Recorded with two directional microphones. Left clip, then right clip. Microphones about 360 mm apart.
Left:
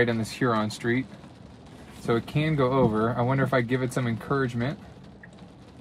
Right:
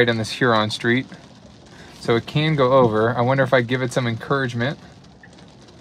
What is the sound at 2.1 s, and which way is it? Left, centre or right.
Speech, right.